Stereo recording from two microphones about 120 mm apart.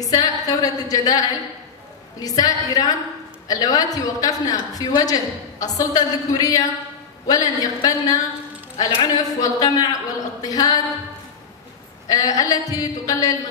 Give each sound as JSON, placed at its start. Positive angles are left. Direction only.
{"t": 0.0, "sound": "a woman's voice", "side_deg": 30}
{"t": 12.1, "sound": "a woman's voice", "side_deg": 30}